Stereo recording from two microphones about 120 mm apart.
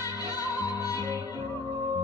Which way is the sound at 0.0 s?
30° left (ahead or behind).